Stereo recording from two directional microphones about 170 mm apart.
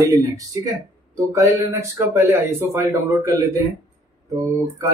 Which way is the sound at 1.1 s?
20° right (ahead or behind).